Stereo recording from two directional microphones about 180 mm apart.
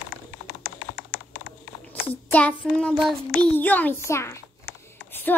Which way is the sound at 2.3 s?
10° left (ahead or behind).